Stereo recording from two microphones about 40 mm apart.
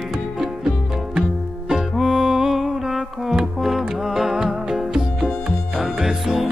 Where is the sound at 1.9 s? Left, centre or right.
Centre.